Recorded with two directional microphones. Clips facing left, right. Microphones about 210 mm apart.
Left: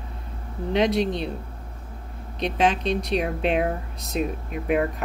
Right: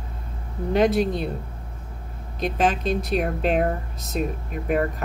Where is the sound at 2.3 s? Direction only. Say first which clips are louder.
Right 1 dB; 45° right (ahead or behind).